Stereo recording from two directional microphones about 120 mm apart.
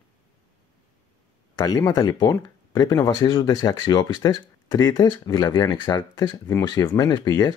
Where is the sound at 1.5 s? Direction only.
30° left (ahead or behind).